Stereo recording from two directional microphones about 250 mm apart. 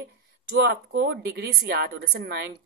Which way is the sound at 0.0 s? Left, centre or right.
Right.